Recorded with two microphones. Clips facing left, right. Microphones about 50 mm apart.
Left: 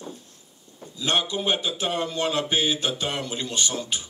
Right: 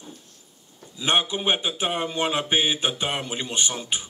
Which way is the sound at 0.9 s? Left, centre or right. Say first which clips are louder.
Right 2 dB; right.